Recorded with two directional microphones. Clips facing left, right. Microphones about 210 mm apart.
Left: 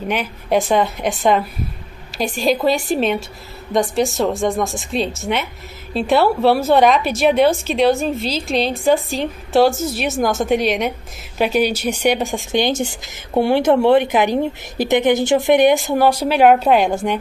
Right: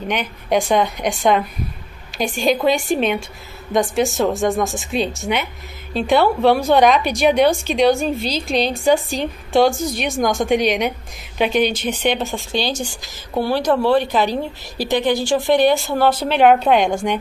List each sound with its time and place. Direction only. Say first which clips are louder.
0.1 s a woman's voice: left 1 dB; 5° left (ahead or behind)